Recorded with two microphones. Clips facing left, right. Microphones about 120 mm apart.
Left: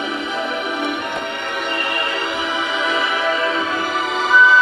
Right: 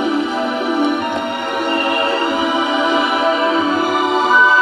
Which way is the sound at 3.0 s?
40° right (ahead or behind).